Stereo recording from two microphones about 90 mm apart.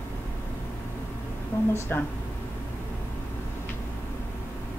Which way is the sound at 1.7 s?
25° left (ahead or behind).